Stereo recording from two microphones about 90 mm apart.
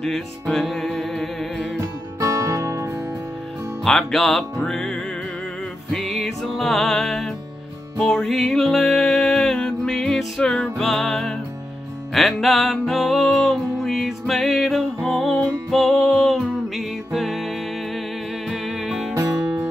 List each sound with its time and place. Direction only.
0.0 s music: 5° left (ahead or behind)
1.8 s music: 40° right (ahead or behind)
3.8 s music: 5° left (ahead or behind)